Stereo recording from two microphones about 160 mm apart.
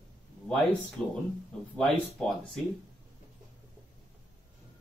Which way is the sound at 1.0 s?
5° left (ahead or behind).